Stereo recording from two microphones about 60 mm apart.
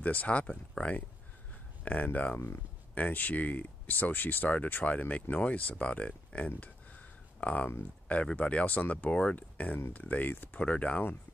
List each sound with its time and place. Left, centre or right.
0.0 s speech: left
10.6 s speech: left